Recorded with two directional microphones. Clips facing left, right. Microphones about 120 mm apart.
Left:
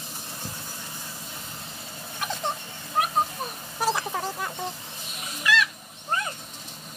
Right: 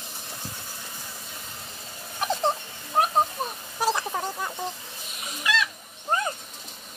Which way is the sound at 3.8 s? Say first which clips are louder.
Right 1 dB; centre (ahead or behind).